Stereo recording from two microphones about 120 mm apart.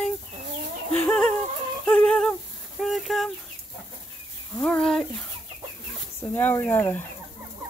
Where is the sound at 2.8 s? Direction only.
Centre (ahead or behind).